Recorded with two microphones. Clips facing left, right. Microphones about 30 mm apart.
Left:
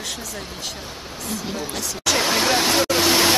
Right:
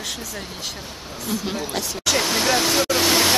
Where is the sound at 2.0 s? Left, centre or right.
Centre.